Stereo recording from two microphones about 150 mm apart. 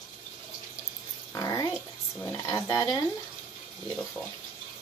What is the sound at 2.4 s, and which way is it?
Speech, 20° left (ahead or behind).